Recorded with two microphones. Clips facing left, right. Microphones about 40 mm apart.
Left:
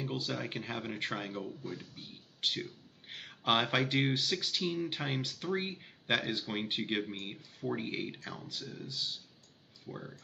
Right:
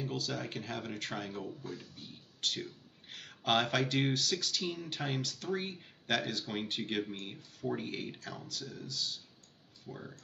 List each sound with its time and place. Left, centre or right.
0.0 s speech: left